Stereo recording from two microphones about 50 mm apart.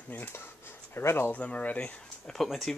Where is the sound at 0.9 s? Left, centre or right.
Left.